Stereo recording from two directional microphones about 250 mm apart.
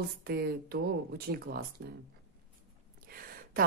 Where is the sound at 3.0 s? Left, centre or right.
Right.